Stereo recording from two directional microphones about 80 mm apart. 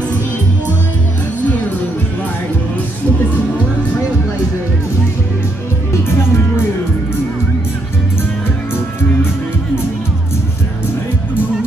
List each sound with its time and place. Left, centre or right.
6.0 s music: left